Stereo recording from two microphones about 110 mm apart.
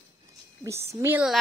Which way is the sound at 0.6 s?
25° right (ahead or behind).